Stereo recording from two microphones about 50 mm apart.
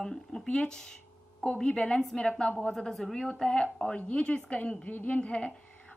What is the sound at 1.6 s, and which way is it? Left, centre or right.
Speech, centre.